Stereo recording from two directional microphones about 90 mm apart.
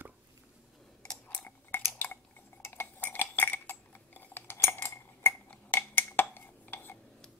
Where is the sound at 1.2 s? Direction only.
20° left (ahead or behind).